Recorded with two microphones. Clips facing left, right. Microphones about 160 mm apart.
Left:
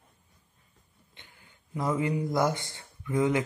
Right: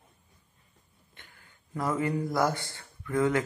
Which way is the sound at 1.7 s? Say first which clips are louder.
Left 1 dB; 15° left (ahead or behind).